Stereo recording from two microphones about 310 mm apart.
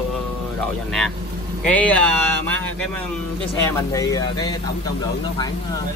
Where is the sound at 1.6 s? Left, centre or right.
Centre.